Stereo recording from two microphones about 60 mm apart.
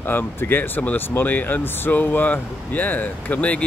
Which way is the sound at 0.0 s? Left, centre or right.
Left.